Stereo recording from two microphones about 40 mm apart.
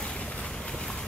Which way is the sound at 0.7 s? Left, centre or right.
Centre.